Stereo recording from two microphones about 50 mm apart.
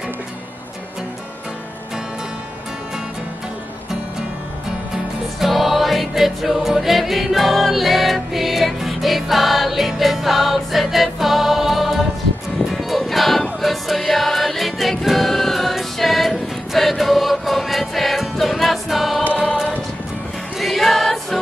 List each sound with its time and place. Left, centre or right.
5.4 s music: centre
20.5 s choir: centre